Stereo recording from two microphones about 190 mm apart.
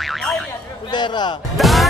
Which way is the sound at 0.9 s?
25° left (ahead or behind).